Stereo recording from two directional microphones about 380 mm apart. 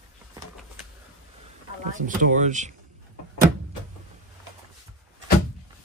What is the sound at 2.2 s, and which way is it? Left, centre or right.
Speech, centre.